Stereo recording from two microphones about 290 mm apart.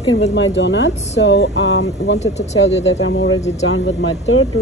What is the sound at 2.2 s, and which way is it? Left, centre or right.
Speech, left.